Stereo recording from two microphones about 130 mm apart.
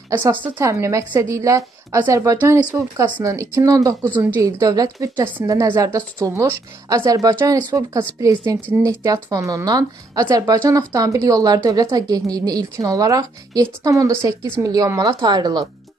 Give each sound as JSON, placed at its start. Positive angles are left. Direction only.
{"t": 0.1, "sound": "a woman's voice", "side_deg": -15}